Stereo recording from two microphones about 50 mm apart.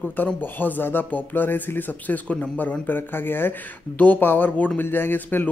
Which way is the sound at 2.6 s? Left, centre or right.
Left.